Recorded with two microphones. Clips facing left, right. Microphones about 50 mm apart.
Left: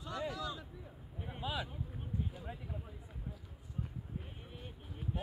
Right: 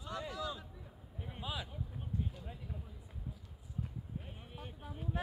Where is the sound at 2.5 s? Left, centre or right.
Left.